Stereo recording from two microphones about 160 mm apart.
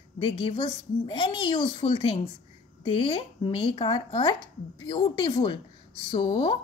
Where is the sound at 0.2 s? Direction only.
30° left (ahead or behind).